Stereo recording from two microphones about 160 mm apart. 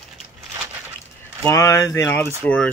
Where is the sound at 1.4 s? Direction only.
20° left (ahead or behind).